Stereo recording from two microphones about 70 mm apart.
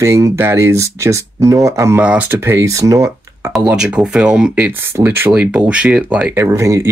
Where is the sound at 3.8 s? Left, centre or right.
Centre.